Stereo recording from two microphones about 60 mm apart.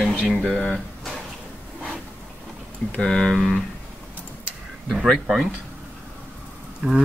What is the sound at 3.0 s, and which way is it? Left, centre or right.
Speech, centre.